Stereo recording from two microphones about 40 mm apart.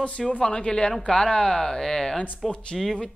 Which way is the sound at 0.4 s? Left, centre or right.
Left.